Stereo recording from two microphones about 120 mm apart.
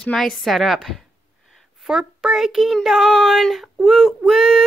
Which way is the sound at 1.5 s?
5° right (ahead or behind).